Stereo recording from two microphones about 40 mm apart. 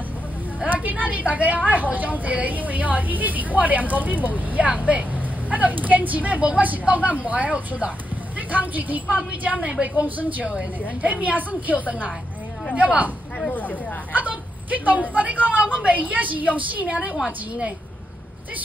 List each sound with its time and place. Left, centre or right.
0.8 s a woman's voice: right
9.6 s a woman's voice: right
9.9 s speech: right
10.4 s a woman's voice: right
11.0 s a woman's voice: right
14.1 s a woman's voice: right